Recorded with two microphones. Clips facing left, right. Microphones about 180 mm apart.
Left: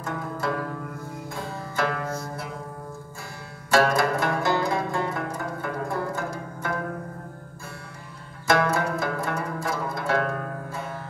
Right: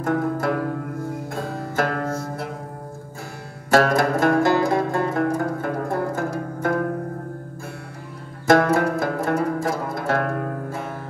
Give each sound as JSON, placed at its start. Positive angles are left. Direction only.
{"t": 0.0, "sound": "music", "side_deg": -55}
{"t": 3.7, "sound": "music", "side_deg": -45}
{"t": 8.5, "sound": "zither", "side_deg": -45}